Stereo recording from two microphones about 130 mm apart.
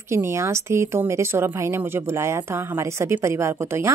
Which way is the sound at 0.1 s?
20° right (ahead or behind).